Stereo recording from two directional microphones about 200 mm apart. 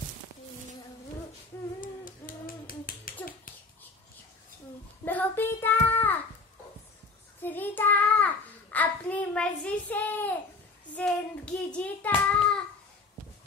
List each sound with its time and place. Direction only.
1.8 s a sound: 45° left (ahead or behind)
5.0 s child singing: 10° left (ahead or behind)
7.4 s child singing: 10° left (ahead or behind)